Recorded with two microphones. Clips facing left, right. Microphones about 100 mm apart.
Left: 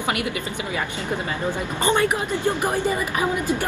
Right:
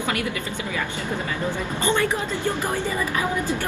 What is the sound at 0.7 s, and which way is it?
A woman's voice, 15° left (ahead or behind).